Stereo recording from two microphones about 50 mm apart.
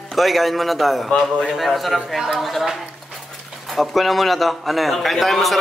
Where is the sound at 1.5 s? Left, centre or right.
Centre.